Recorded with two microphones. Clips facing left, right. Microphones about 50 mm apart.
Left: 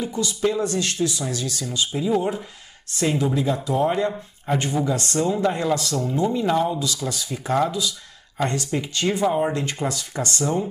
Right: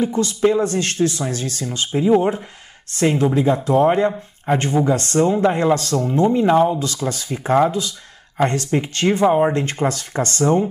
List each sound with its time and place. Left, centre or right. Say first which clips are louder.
0.0 s speech: right 6 dB; right
5.3 s speech: right 4 dB; right
5.8 s speech: right 5 dB; right